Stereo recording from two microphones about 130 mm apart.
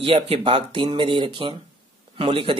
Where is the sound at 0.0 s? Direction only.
45° right (ahead or behind).